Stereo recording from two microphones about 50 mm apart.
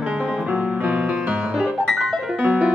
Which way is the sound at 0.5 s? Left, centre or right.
Right.